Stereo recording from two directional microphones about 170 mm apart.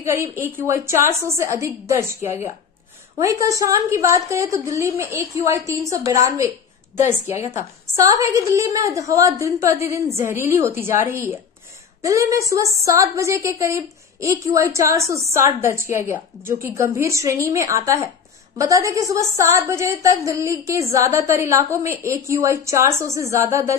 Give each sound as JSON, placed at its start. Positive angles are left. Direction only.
{"t": 0.0, "sound": "a woman's voice", "side_deg": -15}